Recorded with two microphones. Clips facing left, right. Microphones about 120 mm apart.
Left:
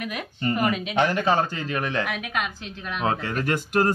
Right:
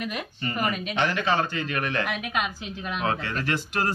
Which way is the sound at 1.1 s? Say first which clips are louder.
Left 3 dB; 40° left (ahead or behind).